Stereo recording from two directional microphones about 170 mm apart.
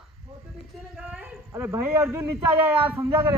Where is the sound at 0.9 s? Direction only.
5° right (ahead or behind).